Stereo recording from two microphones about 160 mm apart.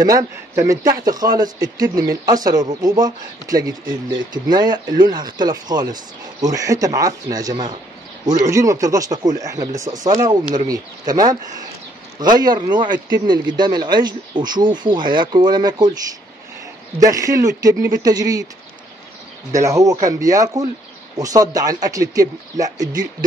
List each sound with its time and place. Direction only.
0.0 s speech: 25° right (ahead or behind)
17.0 s speech: 20° right (ahead or behind)
19.5 s speech: 20° right (ahead or behind)